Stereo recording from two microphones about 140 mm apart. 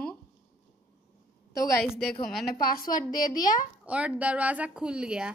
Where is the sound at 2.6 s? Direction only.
85° left.